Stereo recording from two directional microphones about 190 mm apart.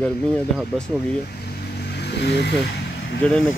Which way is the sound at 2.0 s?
60° left (ahead or behind).